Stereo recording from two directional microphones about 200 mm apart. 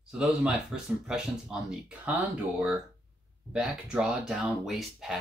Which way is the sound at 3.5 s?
5° right (ahead or behind).